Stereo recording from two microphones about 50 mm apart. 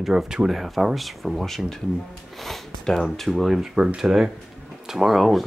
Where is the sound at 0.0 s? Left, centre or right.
Centre.